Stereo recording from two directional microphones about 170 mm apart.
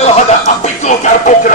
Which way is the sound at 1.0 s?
50° left (ahead or behind).